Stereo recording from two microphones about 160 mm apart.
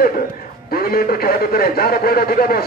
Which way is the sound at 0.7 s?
65° left (ahead or behind).